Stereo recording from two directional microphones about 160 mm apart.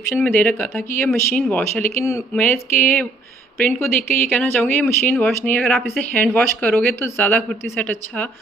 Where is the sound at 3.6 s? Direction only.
10° left (ahead or behind).